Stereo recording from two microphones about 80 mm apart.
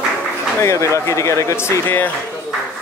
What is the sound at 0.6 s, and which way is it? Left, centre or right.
A man's voice, left.